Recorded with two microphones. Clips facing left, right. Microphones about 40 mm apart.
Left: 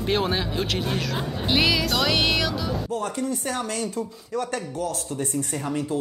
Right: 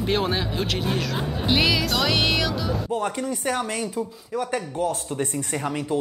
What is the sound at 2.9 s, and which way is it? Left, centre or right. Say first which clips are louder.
Speech: right 2 dB; right.